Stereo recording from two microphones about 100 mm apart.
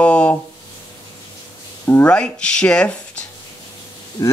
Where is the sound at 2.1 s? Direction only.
10° left (ahead or behind).